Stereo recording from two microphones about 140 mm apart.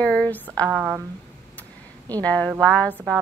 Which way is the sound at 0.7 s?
10° right (ahead or behind).